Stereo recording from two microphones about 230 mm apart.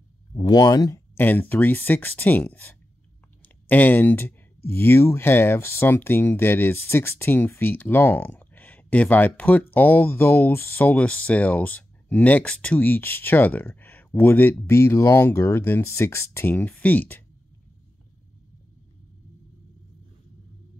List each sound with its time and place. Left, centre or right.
0.3 s speech: centre